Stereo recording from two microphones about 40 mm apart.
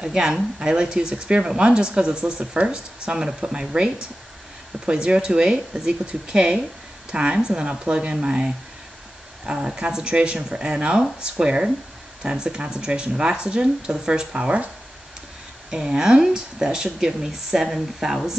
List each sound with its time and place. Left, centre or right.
0.0 s speech: centre
4.7 s speech: right
9.5 s speech: centre
15.7 s speech: centre